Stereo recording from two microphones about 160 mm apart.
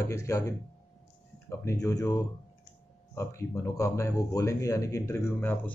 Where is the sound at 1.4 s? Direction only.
20° left (ahead or behind).